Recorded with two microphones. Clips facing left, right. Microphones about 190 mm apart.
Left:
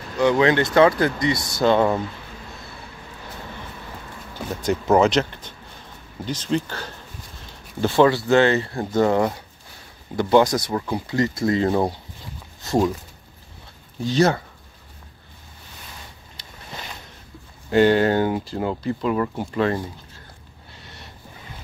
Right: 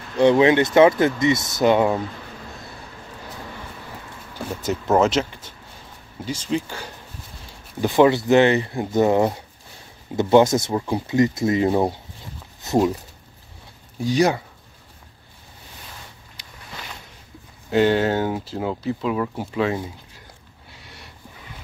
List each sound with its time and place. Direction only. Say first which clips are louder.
0.2 s speech: right 3 dB; 25° right (ahead or behind)
4.4 s speech: left 2 dB; 5° right (ahead or behind)
14.0 s speech: even; 15° right (ahead or behind)
16.4 s a sound: left 2 dB; 15° right (ahead or behind)
17.6 s speech: left 2 dB; centre (ahead or behind)
20.8 s a sound: left 1 dB; 10° right (ahead or behind)